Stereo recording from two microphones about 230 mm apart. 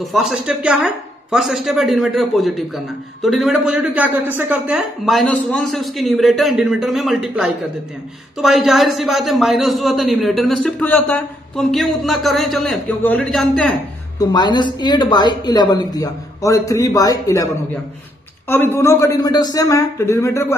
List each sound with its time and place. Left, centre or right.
0.0 s speech: centre
14.3 s speech: centre
18.5 s speech: centre